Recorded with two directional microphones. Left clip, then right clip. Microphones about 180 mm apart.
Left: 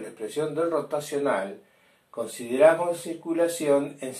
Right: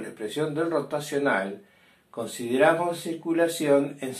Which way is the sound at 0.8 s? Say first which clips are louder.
Even; 20° right (ahead or behind).